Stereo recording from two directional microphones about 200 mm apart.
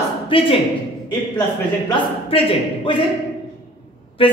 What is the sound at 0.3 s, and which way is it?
Speech, 25° left (ahead or behind).